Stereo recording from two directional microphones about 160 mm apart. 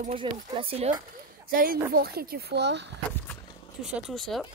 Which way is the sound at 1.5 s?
65° right (ahead or behind).